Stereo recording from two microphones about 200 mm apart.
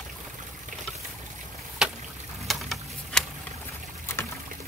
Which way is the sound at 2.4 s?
Centre (ahead or behind).